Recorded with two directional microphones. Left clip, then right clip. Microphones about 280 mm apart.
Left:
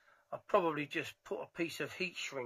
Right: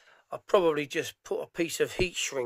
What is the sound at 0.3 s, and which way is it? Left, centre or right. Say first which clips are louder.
Speech: right 8 dB; right.